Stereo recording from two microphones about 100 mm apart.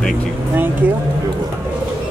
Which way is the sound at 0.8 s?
20° right (ahead or behind).